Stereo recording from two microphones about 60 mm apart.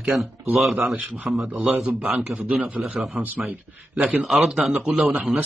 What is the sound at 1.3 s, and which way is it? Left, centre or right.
A man's voice, centre.